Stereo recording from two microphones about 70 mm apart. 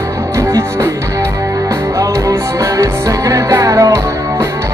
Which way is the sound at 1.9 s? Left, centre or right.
Right.